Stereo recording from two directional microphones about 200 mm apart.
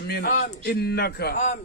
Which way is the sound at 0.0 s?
50° left (ahead or behind).